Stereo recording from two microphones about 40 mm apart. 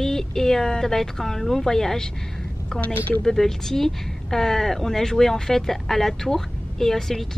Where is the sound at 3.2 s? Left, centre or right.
Centre.